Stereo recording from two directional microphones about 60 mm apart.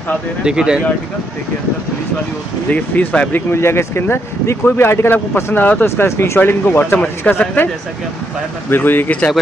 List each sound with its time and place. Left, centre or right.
0.4 s speech: centre
2.7 s speech: left
3.5 s speech: left
5.3 s speech: left
5.9 s speech: left